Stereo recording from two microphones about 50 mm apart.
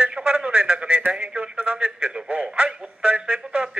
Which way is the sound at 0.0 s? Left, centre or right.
Right.